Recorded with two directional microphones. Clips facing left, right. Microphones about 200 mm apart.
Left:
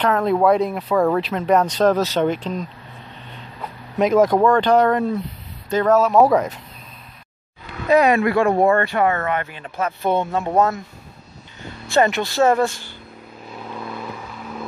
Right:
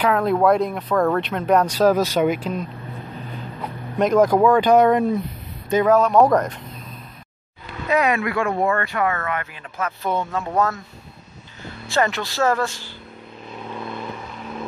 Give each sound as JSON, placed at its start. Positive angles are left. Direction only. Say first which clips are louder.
{"t": 0.0, "sound": "speech", "louder": "left 1 dB", "side_deg": 0}
{"t": 4.0, "sound": "speech", "louder": "even", "side_deg": 0}
{"t": 5.9, "sound": "speech", "louder": "left 1 dB", "side_deg": 5}
{"t": 7.9, "sound": "speech", "louder": "left 5 dB", "side_deg": 35}
{"t": 11.9, "sound": "speech", "louder": "left 4 dB", "side_deg": 20}
{"t": 13.7, "sound": "vehicle", "louder": "even", "side_deg": 0}